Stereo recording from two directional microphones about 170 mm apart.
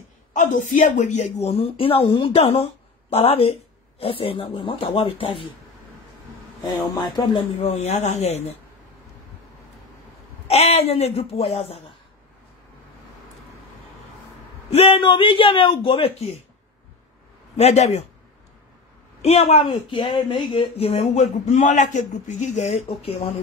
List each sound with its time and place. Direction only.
0.3 s speech: 50° left (ahead or behind); by 5.5 s 30° left (ahead or behind)
6.8 s speech: 25° left (ahead or behind)
7.6 s speech: 40° left (ahead or behind)
10.5 s speech: 35° left (ahead or behind)
14.7 s speech: 35° left (ahead or behind)
17.6 s speech: 40° left (ahead or behind)
19.2 s speech: 35° left (ahead or behind)